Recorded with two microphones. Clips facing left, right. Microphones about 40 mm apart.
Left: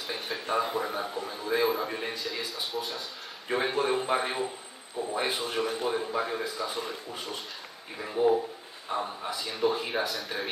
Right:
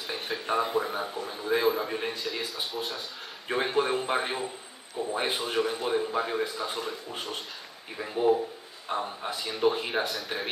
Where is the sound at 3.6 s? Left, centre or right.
Centre.